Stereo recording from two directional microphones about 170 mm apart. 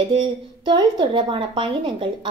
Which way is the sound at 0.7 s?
30° right (ahead or behind).